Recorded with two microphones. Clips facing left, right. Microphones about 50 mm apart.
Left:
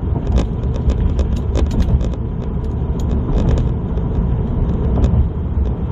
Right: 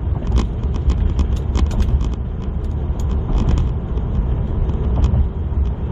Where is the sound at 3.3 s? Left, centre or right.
Right.